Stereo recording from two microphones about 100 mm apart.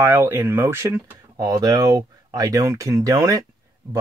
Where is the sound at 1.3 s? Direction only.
35° right (ahead or behind).